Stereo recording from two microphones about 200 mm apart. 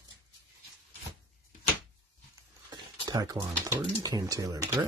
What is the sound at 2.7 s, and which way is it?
Speech, 20° right (ahead or behind).